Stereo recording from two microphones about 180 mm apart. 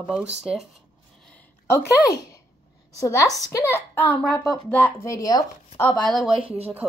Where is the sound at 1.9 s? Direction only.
20° left (ahead or behind).